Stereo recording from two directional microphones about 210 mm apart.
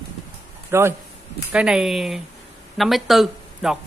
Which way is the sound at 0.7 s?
10° right (ahead or behind).